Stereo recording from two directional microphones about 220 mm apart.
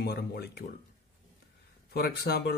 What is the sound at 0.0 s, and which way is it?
Speech, 45° left (ahead or behind).